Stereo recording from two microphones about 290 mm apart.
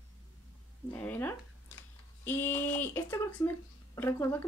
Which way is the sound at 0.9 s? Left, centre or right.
Centre.